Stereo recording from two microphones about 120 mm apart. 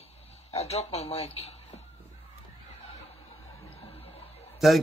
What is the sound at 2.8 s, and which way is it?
Chuckle, 55° left (ahead or behind).